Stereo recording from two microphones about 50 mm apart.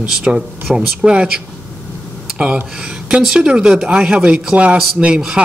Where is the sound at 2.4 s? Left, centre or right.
Right.